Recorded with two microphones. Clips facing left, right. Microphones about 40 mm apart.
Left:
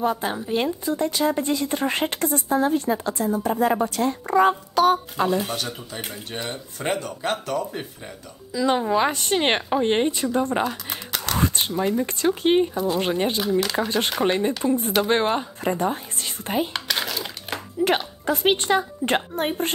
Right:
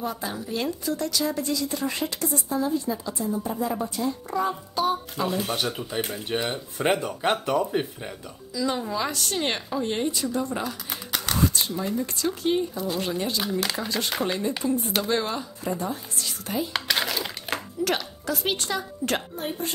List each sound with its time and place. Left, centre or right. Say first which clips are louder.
0.0 s a woman's voice: left 7 dB; left
5.3 s speech: left 3 dB; centre
5.6 s speech: right 3 dB; centre
8.5 s speech: left 6 dB; left
11.1 s a sound: left 1 dB; centre
11.3 s a sound: left 1 dB; left
12.0 s speech: left 5 dB; left
13.4 s speech: left 5 dB; centre
13.7 s speech: left 5 dB; left
16.7 s a sound: right 1 dB; centre
17.8 s a woman's voice: left 6 dB; left
19.6 s a woman's voice: left 5 dB; left